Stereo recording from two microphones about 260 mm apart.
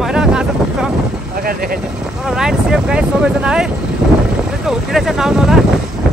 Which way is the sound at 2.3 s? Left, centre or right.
Centre.